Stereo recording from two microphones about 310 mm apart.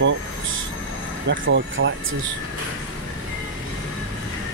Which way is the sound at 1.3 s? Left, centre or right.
Right.